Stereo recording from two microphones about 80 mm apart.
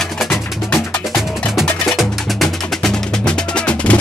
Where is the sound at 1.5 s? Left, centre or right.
Centre.